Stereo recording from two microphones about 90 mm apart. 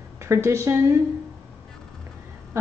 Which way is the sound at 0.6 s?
30° right (ahead or behind).